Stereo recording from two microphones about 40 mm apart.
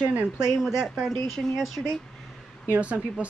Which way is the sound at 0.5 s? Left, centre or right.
Centre.